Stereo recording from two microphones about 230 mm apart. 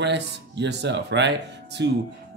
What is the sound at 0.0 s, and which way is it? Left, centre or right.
Speech, right.